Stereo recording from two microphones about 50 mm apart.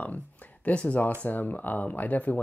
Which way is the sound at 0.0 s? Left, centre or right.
Left.